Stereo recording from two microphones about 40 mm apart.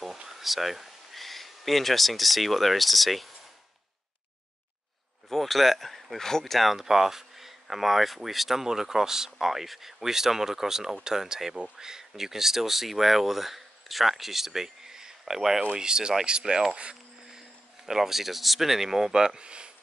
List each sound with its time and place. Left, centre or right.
0.2 s speech: centre
5.3 s speech: centre; by 16.9 s right
17.8 s speech: centre